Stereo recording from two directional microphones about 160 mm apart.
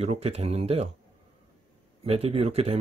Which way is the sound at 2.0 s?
40° right (ahead or behind).